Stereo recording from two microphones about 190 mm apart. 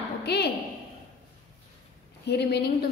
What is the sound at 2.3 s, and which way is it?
Speech, 60° left (ahead or behind).